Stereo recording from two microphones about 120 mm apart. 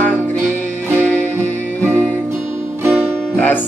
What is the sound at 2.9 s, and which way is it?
Music, 15° right (ahead or behind).